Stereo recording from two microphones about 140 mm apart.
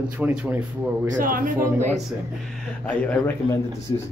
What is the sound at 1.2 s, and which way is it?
Speech, 80° right.